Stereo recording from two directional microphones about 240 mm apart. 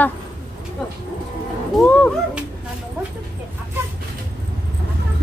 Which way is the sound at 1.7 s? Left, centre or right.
Centre.